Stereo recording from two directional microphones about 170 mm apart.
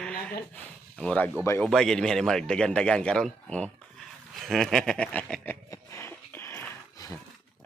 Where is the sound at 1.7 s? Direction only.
5° left (ahead or behind).